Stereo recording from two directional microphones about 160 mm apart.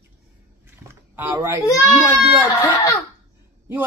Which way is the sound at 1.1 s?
15° right (ahead or behind).